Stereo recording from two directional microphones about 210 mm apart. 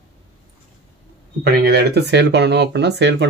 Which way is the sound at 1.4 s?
50° right (ahead or behind).